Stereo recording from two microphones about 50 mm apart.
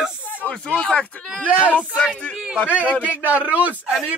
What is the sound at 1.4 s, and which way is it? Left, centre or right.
Speech, right.